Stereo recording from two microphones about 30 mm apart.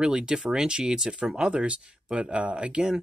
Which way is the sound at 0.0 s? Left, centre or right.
Right.